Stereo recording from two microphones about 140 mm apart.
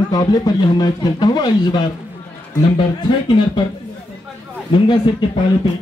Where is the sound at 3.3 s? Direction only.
30° left (ahead or behind).